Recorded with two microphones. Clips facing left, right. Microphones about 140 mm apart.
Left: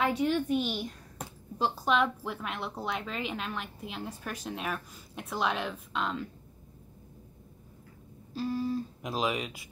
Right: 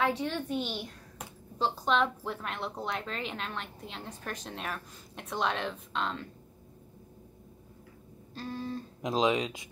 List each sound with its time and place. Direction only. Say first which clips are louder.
0.0 s a woman's voice: left 3 dB; 15° left (ahead or behind)
1.6 s a woman's voice: left 1 dB; 5° left (ahead or behind)
8.3 s a woman's voice: left 6 dB; 5° left (ahead or behind)
9.0 s speech: right 7 dB; 25° right (ahead or behind)